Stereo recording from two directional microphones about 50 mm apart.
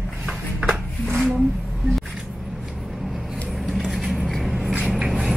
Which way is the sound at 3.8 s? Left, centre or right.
Centre.